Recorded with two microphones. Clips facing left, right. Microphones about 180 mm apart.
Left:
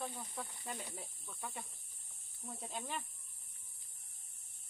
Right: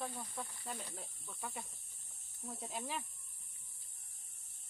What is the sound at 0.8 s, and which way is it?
Speech, 10° left (ahead or behind).